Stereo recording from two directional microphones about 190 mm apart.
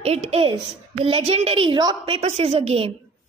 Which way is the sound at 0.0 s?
35° right (ahead or behind).